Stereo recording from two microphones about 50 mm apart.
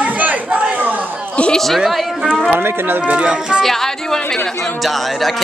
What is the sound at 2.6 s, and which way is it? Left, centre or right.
Speech, right.